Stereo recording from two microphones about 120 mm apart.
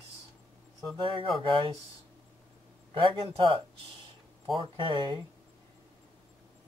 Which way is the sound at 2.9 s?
40° right (ahead or behind).